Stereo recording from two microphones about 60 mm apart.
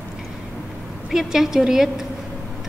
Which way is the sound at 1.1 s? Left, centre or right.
Centre.